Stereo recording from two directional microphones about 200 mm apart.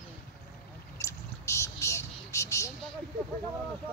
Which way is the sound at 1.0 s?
15° left (ahead or behind).